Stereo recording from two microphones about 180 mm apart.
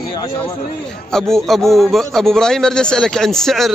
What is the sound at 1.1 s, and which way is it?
A man's voice, 5° left (ahead or behind).